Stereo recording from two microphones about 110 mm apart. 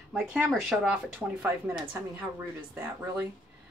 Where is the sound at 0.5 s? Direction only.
5° right (ahead or behind).